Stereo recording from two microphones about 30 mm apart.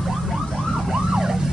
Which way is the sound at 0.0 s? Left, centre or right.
Centre.